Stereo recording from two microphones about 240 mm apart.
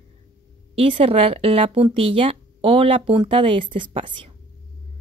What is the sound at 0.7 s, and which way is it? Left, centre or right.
A woman's voice, right.